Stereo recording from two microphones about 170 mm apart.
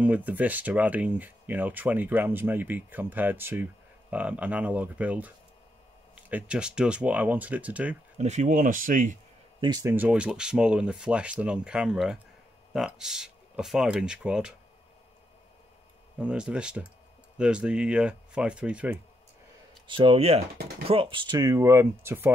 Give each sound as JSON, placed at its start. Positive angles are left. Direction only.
{"t": 0.0, "sound": "speech", "side_deg": -10}
{"t": 8.2, "sound": "speech", "side_deg": -40}
{"t": 9.6, "sound": "speech", "side_deg": -25}
{"t": 9.9, "sound": "speech", "side_deg": -5}
{"t": 16.2, "sound": "speech", "side_deg": -5}
{"t": 19.9, "sound": "speech", "side_deg": -30}
{"t": 21.4, "sound": "speech", "side_deg": -20}